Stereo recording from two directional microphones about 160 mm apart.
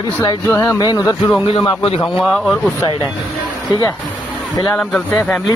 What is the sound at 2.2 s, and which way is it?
Speech, centre (ahead or behind).